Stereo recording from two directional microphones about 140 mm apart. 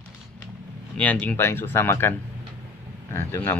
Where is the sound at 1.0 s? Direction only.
10° left (ahead or behind).